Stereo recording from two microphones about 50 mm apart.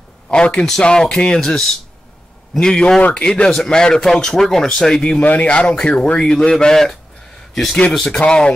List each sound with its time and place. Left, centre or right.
0.3 s speech: left
3.0 s speech: left
3.3 s speech: centre
5.2 s speech: left; by 8.5 s centre